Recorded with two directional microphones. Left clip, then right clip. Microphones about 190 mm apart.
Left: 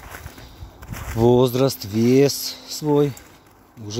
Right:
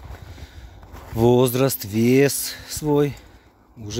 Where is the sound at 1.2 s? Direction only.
30° right (ahead or behind).